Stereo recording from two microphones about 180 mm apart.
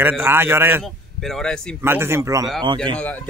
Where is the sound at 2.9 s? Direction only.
10° left (ahead or behind).